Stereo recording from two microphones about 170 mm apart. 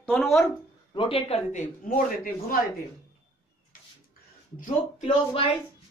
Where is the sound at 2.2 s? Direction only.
55° left (ahead or behind).